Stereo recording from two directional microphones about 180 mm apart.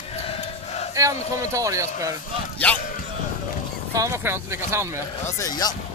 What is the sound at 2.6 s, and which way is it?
Speech, 10° left (ahead or behind).